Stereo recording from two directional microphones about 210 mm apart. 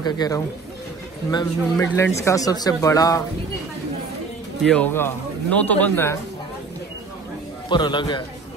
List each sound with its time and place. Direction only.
0.0 s a man's voice: 20° left (ahead or behind)
4.6 s speech: 5° left (ahead or behind)
7.7 s a man's voice: 20° left (ahead or behind)